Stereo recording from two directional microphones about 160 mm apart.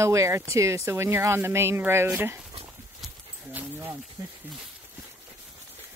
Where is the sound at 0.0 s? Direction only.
20° right (ahead or behind).